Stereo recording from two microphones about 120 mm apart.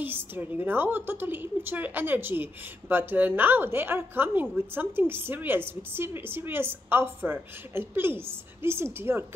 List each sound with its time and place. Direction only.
0.0 s a woman's voice: 15° right (ahead or behind)